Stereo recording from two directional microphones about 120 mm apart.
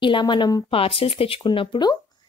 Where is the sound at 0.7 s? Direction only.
50° left (ahead or behind).